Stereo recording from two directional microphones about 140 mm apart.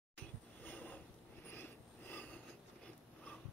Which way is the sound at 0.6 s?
10° left (ahead or behind).